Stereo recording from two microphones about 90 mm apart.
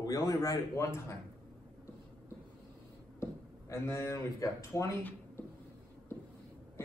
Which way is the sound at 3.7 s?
30° left (ahead or behind).